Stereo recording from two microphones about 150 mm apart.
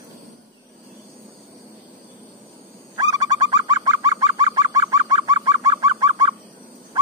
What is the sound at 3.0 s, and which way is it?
Bird, 25° right (ahead or behind).